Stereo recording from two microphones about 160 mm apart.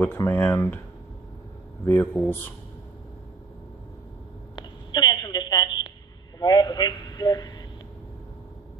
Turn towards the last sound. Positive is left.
turn(degrees=25)  # may be behind; listen again after turning